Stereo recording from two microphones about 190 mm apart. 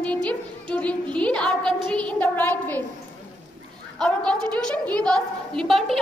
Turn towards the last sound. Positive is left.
turn(degrees=0)  # may be behind; listen again after turning